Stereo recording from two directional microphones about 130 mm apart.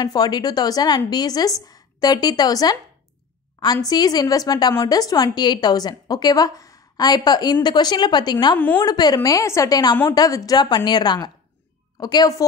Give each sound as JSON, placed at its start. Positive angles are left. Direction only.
{"t": 0.0, "sound": "a woman's voice", "side_deg": 30}
{"t": 8.5, "sound": "a woman's voice", "side_deg": 15}
{"t": 8.8, "sound": "a woman's voice", "side_deg": 30}